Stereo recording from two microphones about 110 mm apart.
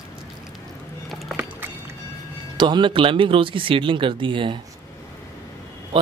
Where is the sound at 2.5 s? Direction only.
45° right (ahead or behind).